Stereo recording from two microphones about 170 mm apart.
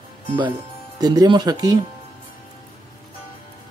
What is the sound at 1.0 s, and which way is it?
Speech, 20° right (ahead or behind).